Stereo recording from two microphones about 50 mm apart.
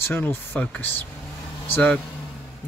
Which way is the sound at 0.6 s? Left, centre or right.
Left.